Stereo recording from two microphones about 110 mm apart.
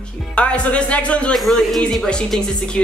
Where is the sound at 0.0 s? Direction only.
10° left (ahead or behind).